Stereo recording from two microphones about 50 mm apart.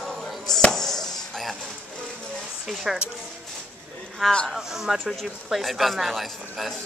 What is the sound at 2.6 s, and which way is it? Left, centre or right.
Speech, centre.